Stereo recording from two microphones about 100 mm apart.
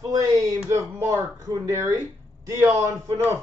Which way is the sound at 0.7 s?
30° right (ahead or behind).